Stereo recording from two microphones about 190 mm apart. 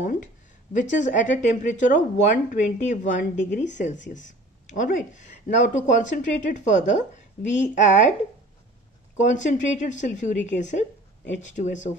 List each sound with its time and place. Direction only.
0.0 s speech: 40° left (ahead or behind)
9.1 s speech: 40° left (ahead or behind)